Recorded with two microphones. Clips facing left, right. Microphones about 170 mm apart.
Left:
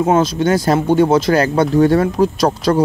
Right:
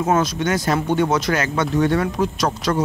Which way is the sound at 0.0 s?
25° left (ahead or behind).